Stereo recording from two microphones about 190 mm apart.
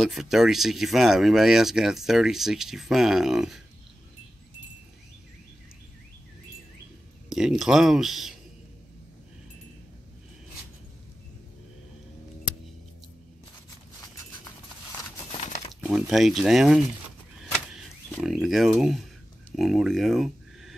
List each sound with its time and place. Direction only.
0.0 s speech: centre (ahead or behind)
7.2 s speech: centre (ahead or behind)
15.3 s a sound: 40° left (ahead or behind)
15.8 s speech: centre (ahead or behind)
17.6 s power windows: centre (ahead or behind)
19.5 s speech: centre (ahead or behind)